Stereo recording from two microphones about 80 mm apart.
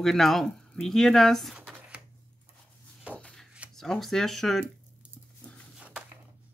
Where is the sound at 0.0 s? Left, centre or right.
Centre.